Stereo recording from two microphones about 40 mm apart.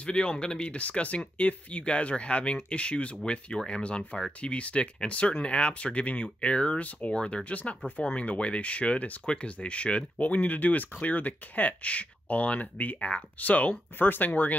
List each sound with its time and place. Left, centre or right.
0.0 s speech: left
0.7 s speech: left
13.9 s speech: left